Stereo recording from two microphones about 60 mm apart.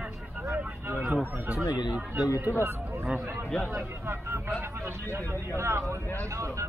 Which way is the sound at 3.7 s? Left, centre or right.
Right.